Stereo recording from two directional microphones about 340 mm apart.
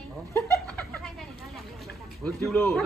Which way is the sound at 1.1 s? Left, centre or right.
Centre.